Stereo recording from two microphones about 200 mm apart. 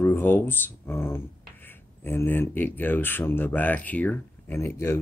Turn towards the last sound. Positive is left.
turn(degrees=15)  # may be behind; listen again after turning